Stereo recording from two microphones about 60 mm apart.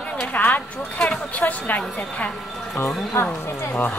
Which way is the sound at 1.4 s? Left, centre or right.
Left.